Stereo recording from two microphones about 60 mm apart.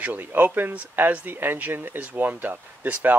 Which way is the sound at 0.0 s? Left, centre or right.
Right.